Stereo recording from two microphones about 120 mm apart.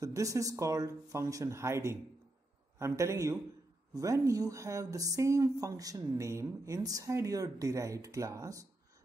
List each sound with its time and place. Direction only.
0.0 s speech: 25° right (ahead or behind)